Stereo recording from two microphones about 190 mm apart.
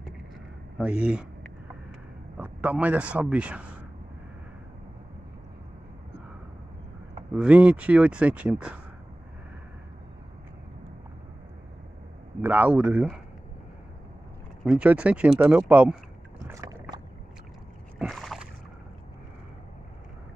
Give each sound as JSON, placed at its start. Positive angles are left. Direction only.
{"t": 0.7, "sound": "a man's voice", "side_deg": -5}
{"t": 7.3, "sound": "speech", "side_deg": -5}
{"t": 12.4, "sound": "speech", "side_deg": -10}
{"t": 14.6, "sound": "speech", "side_deg": -5}
{"t": 16.4, "sound": "boat", "side_deg": -15}
{"t": 17.9, "sound": "boat", "side_deg": 0}